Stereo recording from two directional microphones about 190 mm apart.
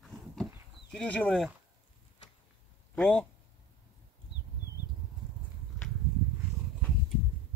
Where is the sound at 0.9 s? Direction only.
5° left (ahead or behind).